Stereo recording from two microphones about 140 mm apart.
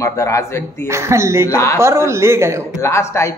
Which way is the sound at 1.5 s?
20° left (ahead or behind).